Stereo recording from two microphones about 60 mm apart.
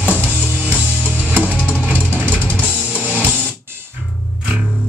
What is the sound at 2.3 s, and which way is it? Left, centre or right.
Drum kit, right.